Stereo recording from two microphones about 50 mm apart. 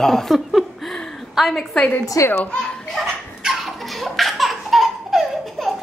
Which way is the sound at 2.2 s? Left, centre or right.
Left.